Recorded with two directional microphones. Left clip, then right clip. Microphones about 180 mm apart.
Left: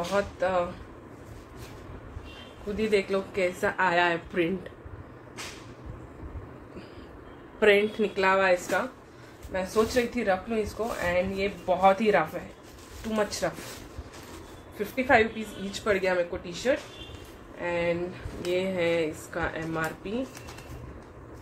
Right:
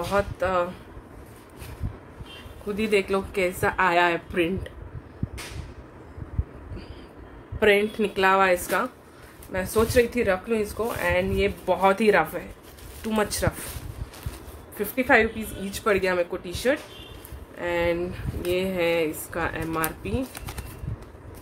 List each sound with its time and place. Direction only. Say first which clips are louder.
0.1 s speech: right 3 dB; 45° right (ahead or behind)
2.8 s speech: right 2 dB; 40° right (ahead or behind)
7.6 s speech: right 1 dB; 15° right (ahead or behind)
8.2 s speech: right 3 dB; 40° right (ahead or behind)
14.8 s speech: right 2 dB; 40° right (ahead or behind)
17.6 s speech: right 3 dB; 35° right (ahead or behind)